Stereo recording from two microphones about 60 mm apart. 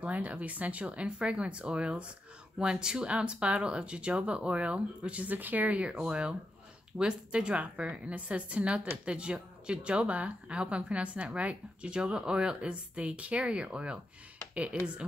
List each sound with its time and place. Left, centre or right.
0.0 s a woman's voice: right